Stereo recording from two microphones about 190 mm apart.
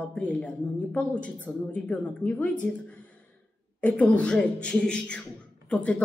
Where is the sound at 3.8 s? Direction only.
5° left (ahead or behind).